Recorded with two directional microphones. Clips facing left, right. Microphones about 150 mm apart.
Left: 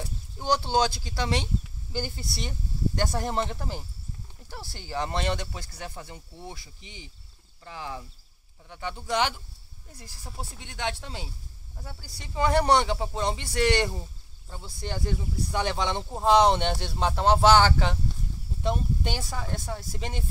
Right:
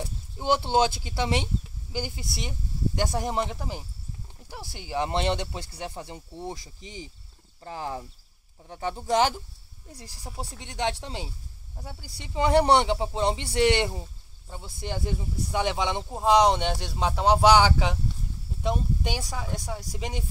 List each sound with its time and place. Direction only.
0.4 s speech: 20° right (ahead or behind); by 9.3 s 40° right (ahead or behind)
10.4 s speech: 35° right (ahead or behind)
11.8 s speech: 20° right (ahead or behind)